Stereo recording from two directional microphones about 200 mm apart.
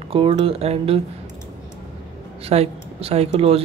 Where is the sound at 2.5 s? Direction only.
30° right (ahead or behind).